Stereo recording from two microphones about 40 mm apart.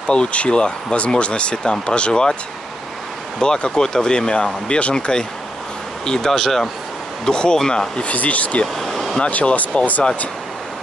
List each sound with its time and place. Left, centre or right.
0.1 s speech: left
3.3 s speech: left
6.0 s speech: centre
7.2 s speech: centre
8.0 s speech: left
8.7 s a sound: centre
9.3 s speech: left